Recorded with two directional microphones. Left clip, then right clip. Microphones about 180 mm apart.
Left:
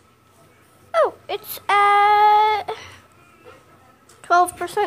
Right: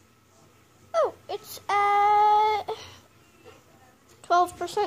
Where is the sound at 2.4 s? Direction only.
5° right (ahead or behind).